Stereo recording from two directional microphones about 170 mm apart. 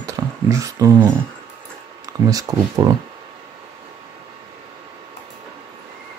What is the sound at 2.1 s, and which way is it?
Speech, 20° right (ahead or behind).